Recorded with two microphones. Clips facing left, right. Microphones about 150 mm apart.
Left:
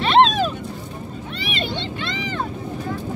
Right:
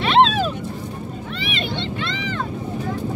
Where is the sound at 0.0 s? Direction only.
5° right (ahead or behind).